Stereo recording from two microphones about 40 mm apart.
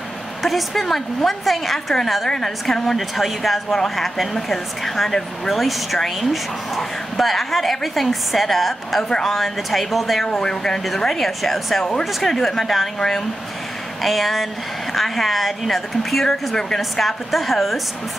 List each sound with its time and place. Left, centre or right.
0.4 s speech: centre
5.5 s speech: centre
10.3 s speech: centre